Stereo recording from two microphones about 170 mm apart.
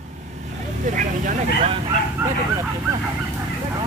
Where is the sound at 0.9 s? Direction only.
50° right (ahead or behind).